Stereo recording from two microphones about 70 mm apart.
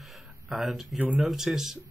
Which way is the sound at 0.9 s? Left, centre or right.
Right.